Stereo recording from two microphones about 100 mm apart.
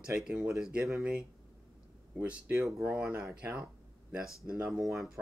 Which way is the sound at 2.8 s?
10° right (ahead or behind).